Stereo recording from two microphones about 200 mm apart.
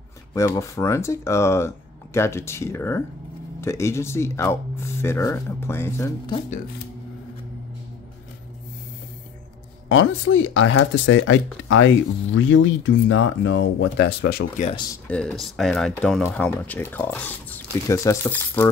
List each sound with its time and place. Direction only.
0.3 s speech: 15° left (ahead or behind)
9.8 s speech: 75° left (ahead or behind); by 14.4 s 55° left (ahead or behind)
15.0 s speech: 5° left (ahead or behind)